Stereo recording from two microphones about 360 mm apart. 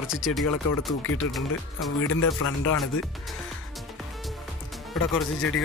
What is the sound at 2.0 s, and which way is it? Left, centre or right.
Speech, left.